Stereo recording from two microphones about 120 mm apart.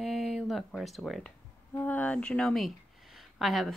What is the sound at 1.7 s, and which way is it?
Speech, 15° left (ahead or behind).